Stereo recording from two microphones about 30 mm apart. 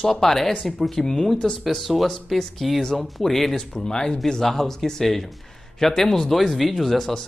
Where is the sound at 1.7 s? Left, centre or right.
Centre.